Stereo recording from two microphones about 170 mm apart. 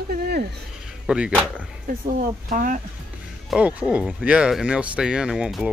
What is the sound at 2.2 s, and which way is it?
Speech, 55° right (ahead or behind).